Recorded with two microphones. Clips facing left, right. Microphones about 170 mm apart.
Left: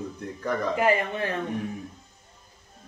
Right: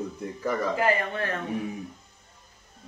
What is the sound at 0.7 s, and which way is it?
Speech, 20° left (ahead or behind).